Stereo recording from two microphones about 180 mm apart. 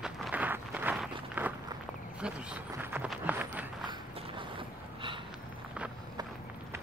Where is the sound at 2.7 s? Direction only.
10° right (ahead or behind).